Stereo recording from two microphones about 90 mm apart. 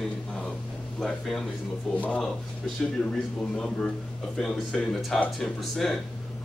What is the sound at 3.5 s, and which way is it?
Speech, 10° left (ahead or behind).